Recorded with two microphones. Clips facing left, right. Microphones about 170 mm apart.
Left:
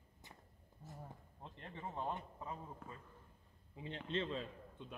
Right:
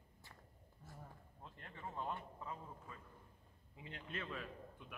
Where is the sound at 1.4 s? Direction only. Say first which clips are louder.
Left 3 dB; 25° left (ahead or behind).